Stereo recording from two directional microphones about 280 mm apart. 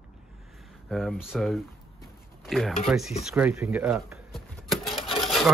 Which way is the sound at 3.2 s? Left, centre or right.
Centre.